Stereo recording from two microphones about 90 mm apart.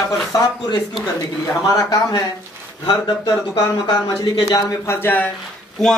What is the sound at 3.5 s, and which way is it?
Speech, 45° left (ahead or behind).